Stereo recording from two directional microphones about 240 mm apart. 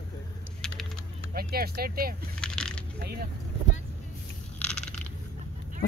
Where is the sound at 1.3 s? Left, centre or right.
Right.